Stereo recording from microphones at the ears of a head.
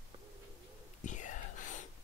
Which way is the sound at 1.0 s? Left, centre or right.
Left.